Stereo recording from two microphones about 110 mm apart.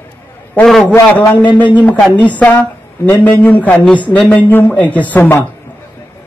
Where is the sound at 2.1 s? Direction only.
15° left (ahead or behind).